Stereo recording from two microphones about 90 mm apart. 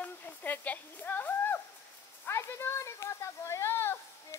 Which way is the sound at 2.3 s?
30° left (ahead or behind).